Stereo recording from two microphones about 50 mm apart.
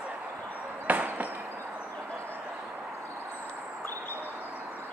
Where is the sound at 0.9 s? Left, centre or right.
Right.